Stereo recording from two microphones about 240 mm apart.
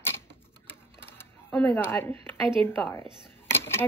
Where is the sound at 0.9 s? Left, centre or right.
Centre.